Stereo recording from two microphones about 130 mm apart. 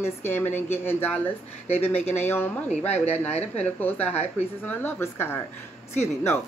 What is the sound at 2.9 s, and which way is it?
Speech, 55° left (ahead or behind).